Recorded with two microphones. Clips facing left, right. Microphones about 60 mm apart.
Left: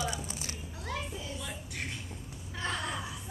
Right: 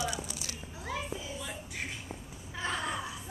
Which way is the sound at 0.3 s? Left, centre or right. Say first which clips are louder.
Left 1 dB; left.